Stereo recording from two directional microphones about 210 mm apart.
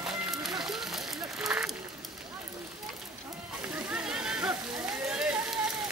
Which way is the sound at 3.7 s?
5° right (ahead or behind).